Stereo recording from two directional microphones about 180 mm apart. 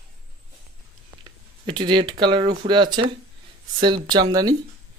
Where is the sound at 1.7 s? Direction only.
25° right (ahead or behind).